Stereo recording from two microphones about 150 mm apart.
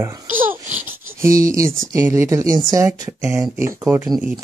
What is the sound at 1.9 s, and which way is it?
Speech, 20° right (ahead or behind).